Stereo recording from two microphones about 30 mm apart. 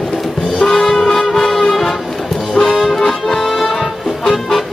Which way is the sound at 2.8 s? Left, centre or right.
Centre.